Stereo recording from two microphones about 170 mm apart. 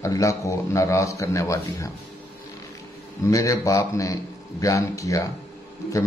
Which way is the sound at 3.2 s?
20° left (ahead or behind).